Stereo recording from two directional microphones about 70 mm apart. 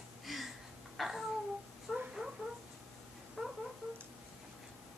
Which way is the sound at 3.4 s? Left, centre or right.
Centre.